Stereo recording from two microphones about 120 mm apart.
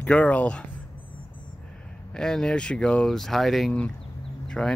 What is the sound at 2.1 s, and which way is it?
Speech, 5° left (ahead or behind).